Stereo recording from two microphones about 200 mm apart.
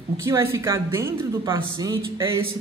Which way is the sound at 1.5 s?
25° right (ahead or behind).